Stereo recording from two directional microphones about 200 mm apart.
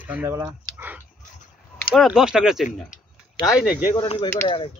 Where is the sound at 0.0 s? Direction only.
10° right (ahead or behind).